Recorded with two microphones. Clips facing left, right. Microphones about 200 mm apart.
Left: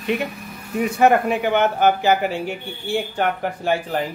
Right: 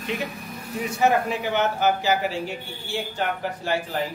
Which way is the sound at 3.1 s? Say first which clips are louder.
Left 5 dB; 55° left (ahead or behind).